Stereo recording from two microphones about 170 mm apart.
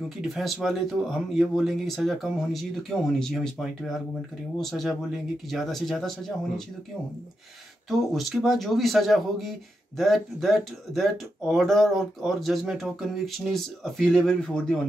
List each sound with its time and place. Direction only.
0.2 s speech: centre (ahead or behind)
7.9 s speech: centre (ahead or behind)